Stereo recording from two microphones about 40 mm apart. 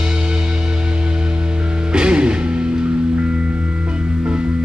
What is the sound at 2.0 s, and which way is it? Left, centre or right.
Music, right.